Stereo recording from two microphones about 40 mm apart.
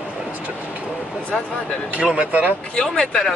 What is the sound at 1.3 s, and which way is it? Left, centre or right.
Speech, centre.